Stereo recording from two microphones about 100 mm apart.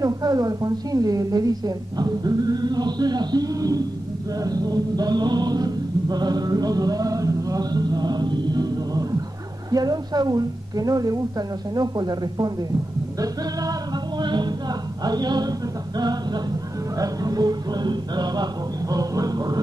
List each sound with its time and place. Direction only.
0.0 s a woman's voice: 40° right (ahead or behind)
4.4 s chant: 40° right (ahead or behind)
9.7 s a woman's voice: 40° right (ahead or behind)
13.2 s music: 40° right (ahead or behind)
16.0 s chant: 45° right (ahead or behind)